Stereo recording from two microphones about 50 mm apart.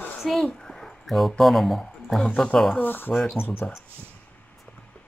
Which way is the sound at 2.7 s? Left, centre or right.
Left.